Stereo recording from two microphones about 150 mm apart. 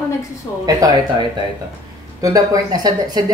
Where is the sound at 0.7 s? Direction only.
25° right (ahead or behind).